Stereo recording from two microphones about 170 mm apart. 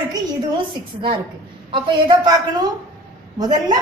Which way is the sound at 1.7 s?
30° right (ahead or behind).